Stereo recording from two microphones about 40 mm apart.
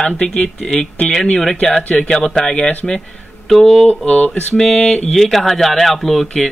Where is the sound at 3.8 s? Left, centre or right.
Left.